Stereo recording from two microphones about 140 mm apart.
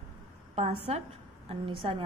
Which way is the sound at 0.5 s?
50° right (ahead or behind).